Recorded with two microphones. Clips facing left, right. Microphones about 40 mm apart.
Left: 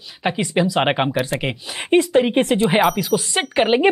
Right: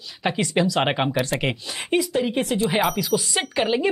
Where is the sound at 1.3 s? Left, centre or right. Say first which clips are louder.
Left 1 dB; centre.